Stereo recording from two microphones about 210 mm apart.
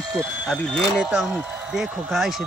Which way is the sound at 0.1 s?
Centre (ahead or behind).